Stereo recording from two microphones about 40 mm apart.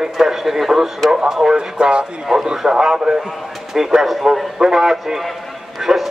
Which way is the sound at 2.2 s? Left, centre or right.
Centre.